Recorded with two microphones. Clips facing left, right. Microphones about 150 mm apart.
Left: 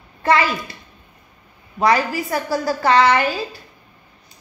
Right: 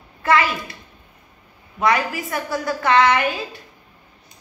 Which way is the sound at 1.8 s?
35° left (ahead or behind).